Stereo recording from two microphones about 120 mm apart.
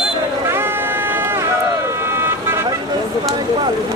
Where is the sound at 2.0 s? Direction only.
20° right (ahead or behind).